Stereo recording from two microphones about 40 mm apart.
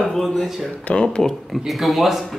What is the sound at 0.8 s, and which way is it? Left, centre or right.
Speech, left.